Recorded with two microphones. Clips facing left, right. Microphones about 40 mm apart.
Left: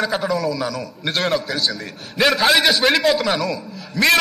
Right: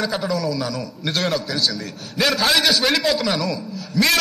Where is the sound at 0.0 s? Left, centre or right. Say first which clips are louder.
Left 2 dB; centre.